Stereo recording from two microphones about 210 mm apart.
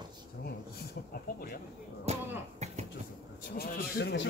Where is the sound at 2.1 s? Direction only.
30° right (ahead or behind).